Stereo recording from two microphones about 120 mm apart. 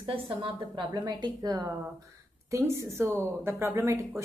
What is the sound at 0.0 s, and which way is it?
A woman's voice, 45° right (ahead or behind).